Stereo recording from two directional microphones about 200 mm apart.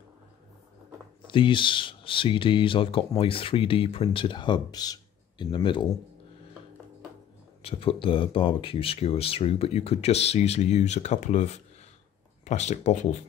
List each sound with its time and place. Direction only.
1.2 s speech: 25° left (ahead or behind)
7.6 s speech: 25° left (ahead or behind)